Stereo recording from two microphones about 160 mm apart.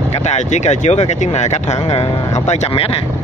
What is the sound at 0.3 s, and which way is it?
Speech, 45° left (ahead or behind).